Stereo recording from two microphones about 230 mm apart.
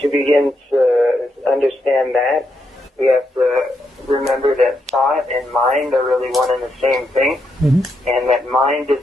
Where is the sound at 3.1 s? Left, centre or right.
Centre.